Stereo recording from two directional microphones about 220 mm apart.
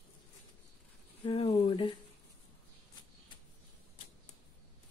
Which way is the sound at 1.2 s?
25° left (ahead or behind).